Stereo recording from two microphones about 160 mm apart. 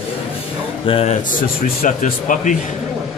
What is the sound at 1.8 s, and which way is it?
Speech, 60° left (ahead or behind).